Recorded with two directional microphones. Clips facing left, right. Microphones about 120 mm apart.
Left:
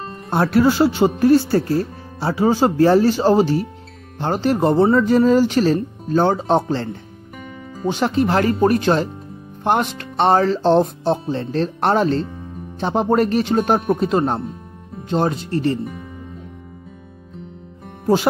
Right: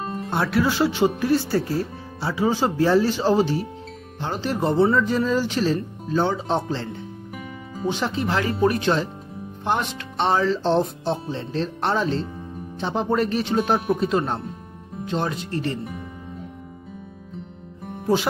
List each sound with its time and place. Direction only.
0.0 s music: 5° right (ahead or behind)
0.3 s speech: 45° left (ahead or behind)